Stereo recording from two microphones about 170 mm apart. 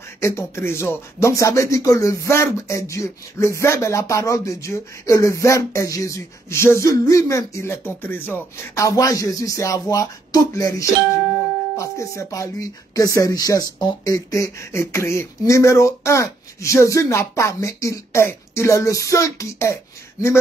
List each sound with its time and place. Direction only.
0.2 s speech: 15° left (ahead or behind)